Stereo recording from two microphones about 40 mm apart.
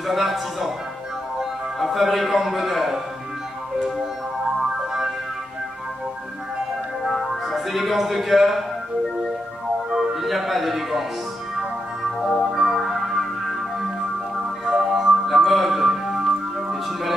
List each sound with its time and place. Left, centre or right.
0.0 s a man's voice: centre
7.1 s music: centre
9.8 s music: right
10.2 s a sound: centre
12.0 s music: centre
12.4 s music: right
12.7 s music: centre
14.7 s music: centre